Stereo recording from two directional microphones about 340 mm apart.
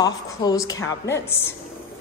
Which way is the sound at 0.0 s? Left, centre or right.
Centre.